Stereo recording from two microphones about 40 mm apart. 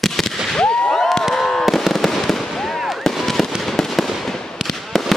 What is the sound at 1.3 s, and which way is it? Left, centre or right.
Fireworks, centre.